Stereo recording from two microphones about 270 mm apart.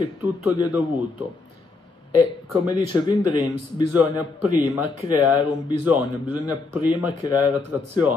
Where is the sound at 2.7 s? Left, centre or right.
Centre.